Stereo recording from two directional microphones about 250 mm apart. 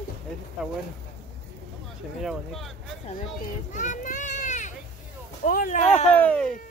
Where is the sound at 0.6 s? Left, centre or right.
Centre.